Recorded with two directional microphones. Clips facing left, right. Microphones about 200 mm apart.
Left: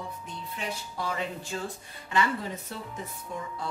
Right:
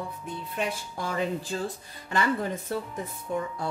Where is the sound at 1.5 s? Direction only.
35° right (ahead or behind).